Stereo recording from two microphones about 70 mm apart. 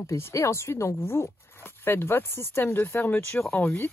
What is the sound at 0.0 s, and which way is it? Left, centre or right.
Speech, left.